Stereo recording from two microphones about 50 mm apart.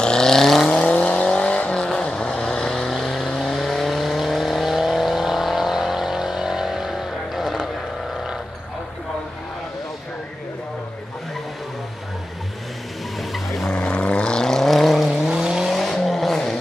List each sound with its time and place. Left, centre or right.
0.0 s vehicle: centre
0.8 s vehicle: left; by 7.7 s centre
13.3 s vehicle: centre
13.7 s vehicle: left; by 15.1 s centre
15.2 s vehicle: centre